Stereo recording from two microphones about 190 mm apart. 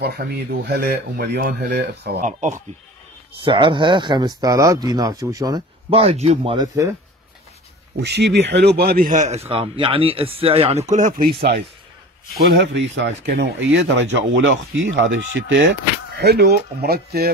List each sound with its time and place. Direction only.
0.0 s speech: 55° right (ahead or behind)
2.4 s a man's voice: 40° right (ahead or behind)
3.4 s speech: 25° right (ahead or behind)
5.9 s a man's voice: 30° right (ahead or behind)
8.0 s a man's voice: 65° right (ahead or behind); by 15.7 s 80° right
16.2 s speech: 60° right (ahead or behind)